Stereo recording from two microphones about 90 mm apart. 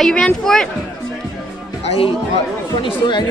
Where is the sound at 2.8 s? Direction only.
60° left (ahead or behind).